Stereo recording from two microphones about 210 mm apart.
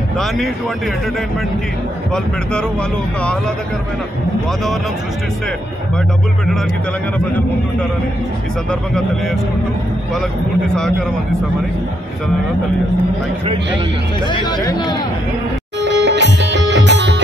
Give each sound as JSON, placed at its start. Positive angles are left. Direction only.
{"t": 14.3, "sound": "speech", "side_deg": 20}
{"t": 15.8, "sound": "music", "side_deg": -55}